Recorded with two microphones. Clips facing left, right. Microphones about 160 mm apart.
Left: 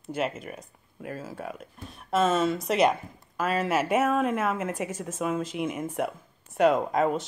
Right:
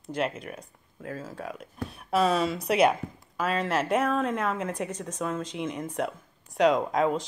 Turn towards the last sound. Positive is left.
turn(degrees=0)  # may be behind; listen again after turning